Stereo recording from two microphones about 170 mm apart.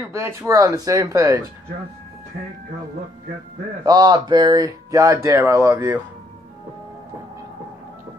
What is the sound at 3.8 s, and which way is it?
Speech, 25° right (ahead or behind).